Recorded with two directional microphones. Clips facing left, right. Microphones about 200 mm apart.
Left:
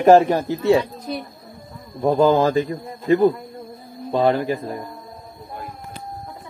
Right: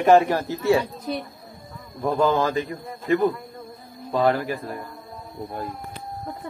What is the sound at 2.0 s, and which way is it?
A man's voice, 30° left (ahead or behind).